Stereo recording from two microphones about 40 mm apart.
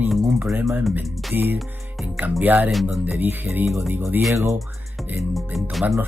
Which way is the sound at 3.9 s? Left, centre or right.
Right.